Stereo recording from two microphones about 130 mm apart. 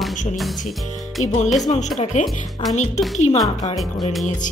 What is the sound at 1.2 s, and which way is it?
A woman's voice, 60° left (ahead or behind).